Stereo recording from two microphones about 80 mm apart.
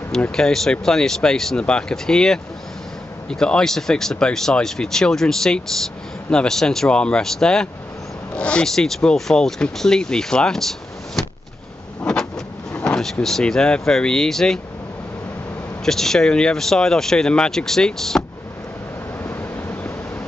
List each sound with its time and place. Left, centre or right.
0.4 s speech: centre
12.0 s vehicle: centre
12.7 s speech: centre
15.8 s speech: centre
19.2 s vehicle: left